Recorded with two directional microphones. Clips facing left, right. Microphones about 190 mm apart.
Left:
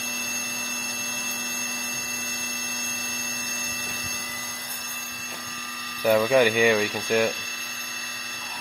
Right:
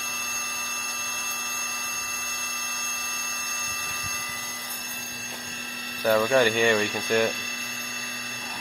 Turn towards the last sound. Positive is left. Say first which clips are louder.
# left 1 dB
turn(degrees=10)  # may be behind; listen again after turning